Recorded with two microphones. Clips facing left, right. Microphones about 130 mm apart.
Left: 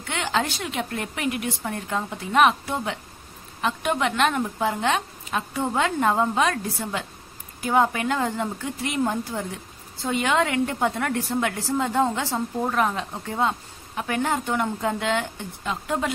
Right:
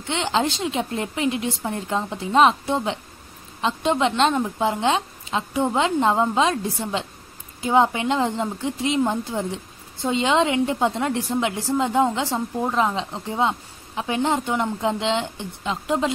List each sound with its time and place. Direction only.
0.0 s a woman's voice: 25° right (ahead or behind)